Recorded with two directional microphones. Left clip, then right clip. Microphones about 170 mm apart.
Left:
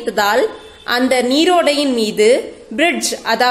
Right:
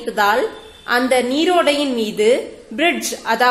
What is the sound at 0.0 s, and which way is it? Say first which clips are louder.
A woman's voice: left 2 dB; 20° left (ahead or behind).